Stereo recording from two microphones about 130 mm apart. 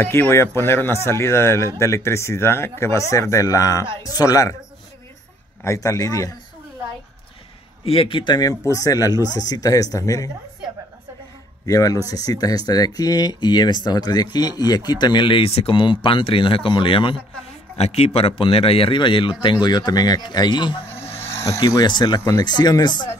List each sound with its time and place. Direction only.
0.0 s speech: 15° left (ahead or behind)
5.6 s speech: 25° left (ahead or behind)
7.8 s speech: 45° left (ahead or behind); by 10.3 s 25° left (ahead or behind)
11.6 s speech: 25° left (ahead or behind); by 17.2 s 40° left (ahead or behind)
17.7 s speech: 55° left (ahead or behind); by 20.8 s 35° left (ahead or behind)
21.2 s speech: 20° left (ahead or behind)